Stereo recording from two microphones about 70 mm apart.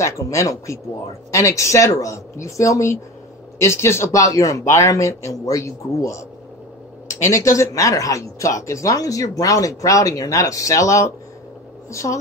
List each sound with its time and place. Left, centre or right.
0.0 s speech: left
4.2 s speech: left